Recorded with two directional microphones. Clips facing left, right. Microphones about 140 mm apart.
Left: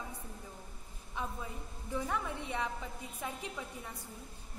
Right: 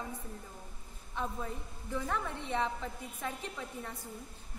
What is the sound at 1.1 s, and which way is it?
A woman's voice, 10° left (ahead or behind).